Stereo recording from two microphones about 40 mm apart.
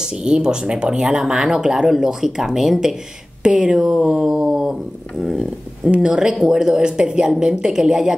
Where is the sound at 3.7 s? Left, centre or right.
Centre.